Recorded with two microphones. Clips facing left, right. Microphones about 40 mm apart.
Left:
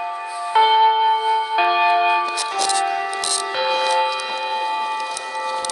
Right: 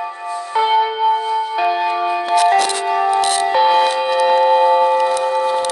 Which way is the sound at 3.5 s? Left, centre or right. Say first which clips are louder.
Right 7 dB; centre.